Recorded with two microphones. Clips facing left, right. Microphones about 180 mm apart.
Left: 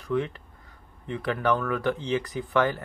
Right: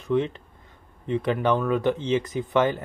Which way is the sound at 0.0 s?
20° right (ahead or behind).